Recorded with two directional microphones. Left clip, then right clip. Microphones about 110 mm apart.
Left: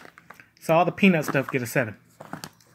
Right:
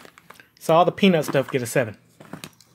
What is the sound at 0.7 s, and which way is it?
Speech, 30° right (ahead or behind).